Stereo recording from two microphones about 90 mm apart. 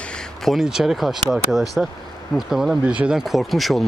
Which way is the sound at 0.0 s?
10° left (ahead or behind).